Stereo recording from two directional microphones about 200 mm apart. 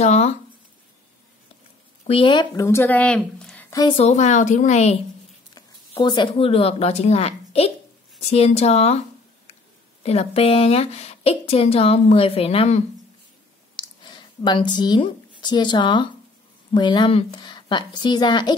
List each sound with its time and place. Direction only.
0.0 s a woman's voice: 35° left (ahead or behind)
2.0 s a woman's voice: 25° left (ahead or behind)
2.6 s a woman's voice: 10° left (ahead or behind)
3.7 s a woman's voice: 25° left (ahead or behind)
10.0 s a woman's voice: 30° left (ahead or behind)